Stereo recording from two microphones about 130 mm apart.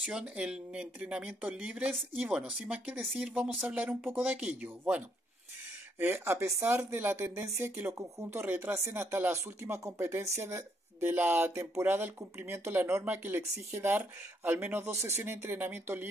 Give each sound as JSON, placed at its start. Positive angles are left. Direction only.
{"t": 0.0, "sound": "speech", "side_deg": -10}